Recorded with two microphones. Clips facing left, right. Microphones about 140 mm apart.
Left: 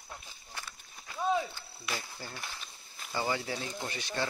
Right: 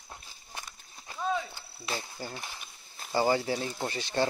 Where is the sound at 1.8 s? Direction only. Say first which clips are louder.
Right 3 dB; 30° right (ahead or behind).